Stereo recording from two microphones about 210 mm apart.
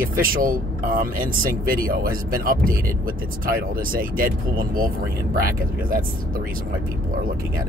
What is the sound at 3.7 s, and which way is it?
Speech, 40° right (ahead or behind).